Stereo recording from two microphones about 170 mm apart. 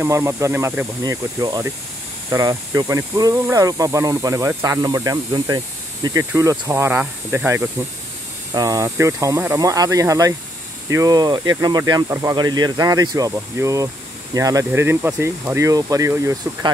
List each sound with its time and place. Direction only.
0.0 s speech: 15° right (ahead or behind)